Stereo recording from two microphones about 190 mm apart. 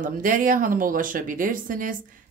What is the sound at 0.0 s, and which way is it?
Speech, 45° right (ahead or behind).